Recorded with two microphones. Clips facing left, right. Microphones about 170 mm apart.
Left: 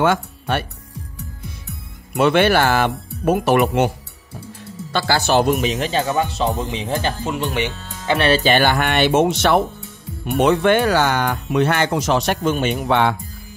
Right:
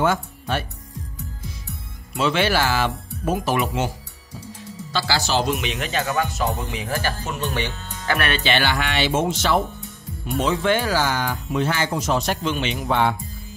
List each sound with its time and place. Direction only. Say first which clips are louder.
0.0 s speech: left 3 dB; 70° left (ahead or behind)
4.9 s speech: left 5 dB; 55° left (ahead or behind)
5.6 s speech: left 6 dB; 35° left (ahead or behind)
8.3 s speech: left 9 dB; 45° left (ahead or behind); by 12.4 s 70° left (ahead or behind)
12.4 s speech: left 5 dB; 50° left (ahead or behind)
12.8 s speech: left 2 dB; 75° left (ahead or behind)